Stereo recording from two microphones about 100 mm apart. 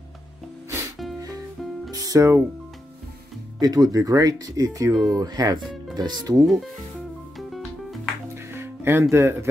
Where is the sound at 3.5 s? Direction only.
40° right (ahead or behind).